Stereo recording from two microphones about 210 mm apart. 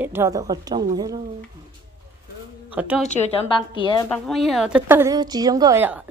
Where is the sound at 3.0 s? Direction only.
30° left (ahead or behind).